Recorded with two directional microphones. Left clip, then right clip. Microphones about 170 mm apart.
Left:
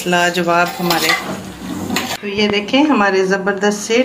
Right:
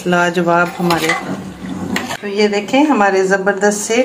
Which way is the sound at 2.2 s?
45° right (ahead or behind).